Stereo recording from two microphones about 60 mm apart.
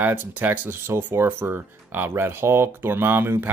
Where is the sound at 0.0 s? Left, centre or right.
Right.